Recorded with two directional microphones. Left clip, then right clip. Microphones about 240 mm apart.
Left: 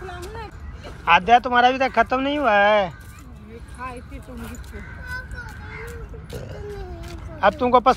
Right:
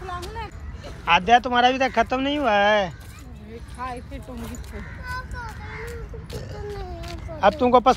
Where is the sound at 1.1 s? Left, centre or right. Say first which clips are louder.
Left 2 dB; centre.